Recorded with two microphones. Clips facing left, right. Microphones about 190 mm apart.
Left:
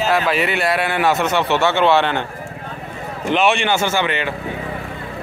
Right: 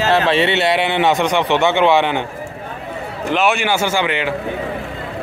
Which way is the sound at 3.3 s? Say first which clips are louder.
Even; 5° right (ahead or behind).